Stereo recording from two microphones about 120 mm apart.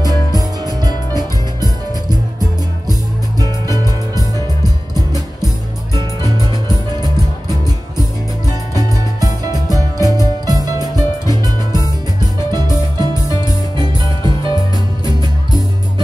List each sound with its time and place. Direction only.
0.3 s music: 30° right (ahead or behind)
5.9 s music: 30° right (ahead or behind)
8.7 s music: 30° right (ahead or behind)
13.3 s music: 30° left (ahead or behind)
13.7 s music: 40° right (ahead or behind)